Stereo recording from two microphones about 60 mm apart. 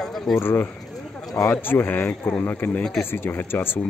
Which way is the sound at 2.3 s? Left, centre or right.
Left.